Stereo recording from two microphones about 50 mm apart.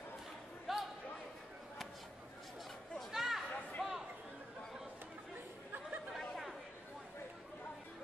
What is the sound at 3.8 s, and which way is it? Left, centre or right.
Chatter, centre.